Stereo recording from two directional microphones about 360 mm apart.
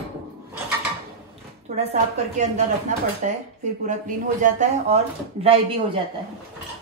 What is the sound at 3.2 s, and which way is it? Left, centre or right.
A woman's voice, centre.